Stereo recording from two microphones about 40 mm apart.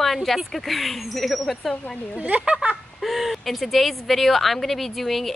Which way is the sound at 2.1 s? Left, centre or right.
Right.